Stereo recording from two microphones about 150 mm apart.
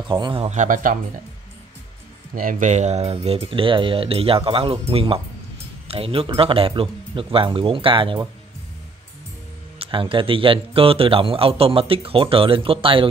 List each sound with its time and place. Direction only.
0.1 s speech: 35° right (ahead or behind)
0.5 s speech: 60° right (ahead or behind)
2.3 s speech: 60° right (ahead or behind); by 8.3 s 35° right (ahead or behind)
9.8 s speech: 35° right (ahead or behind)